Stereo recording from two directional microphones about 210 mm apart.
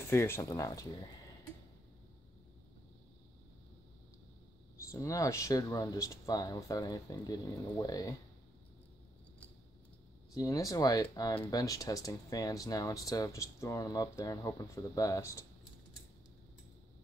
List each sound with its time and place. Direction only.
0.1 s speech: 10° left (ahead or behind)
4.9 s speech: 15° left (ahead or behind)
10.3 s speech: 15° left (ahead or behind)